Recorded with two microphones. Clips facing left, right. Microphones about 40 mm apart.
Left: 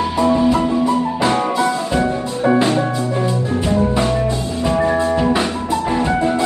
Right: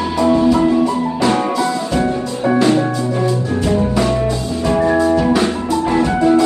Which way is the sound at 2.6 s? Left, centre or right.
Left.